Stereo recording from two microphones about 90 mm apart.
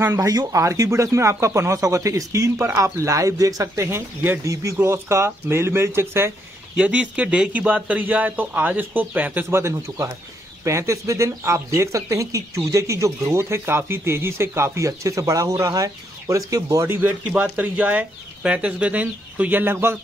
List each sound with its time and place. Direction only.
0.2 s speech: 40° right (ahead or behind)
6.8 s speech: 15° right (ahead or behind); by 16.8 s 40° right (ahead or behind)
16.8 s speech: 25° right (ahead or behind)